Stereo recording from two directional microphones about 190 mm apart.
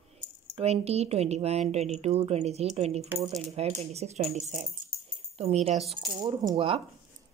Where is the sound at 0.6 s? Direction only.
35° right (ahead or behind).